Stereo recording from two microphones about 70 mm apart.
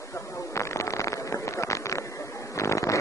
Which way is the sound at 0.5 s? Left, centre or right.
Left.